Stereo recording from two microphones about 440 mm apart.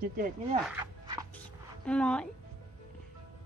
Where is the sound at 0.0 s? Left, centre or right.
Centre.